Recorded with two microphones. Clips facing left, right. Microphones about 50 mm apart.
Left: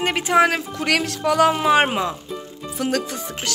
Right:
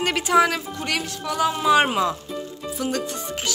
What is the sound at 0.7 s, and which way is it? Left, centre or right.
Speech, left.